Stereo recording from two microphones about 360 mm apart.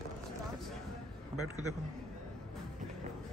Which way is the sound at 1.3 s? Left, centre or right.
Centre.